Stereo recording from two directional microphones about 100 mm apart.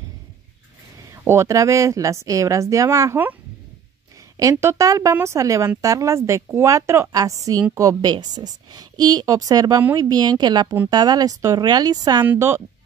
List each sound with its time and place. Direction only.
1.1 s a woman's voice: 25° right (ahead or behind)
4.4 s a woman's voice: 30° right (ahead or behind)
12.4 s a woman's voice: 25° right (ahead or behind)